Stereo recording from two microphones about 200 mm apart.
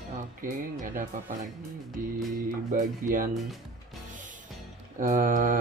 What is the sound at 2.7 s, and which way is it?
Speech, 40° right (ahead or behind).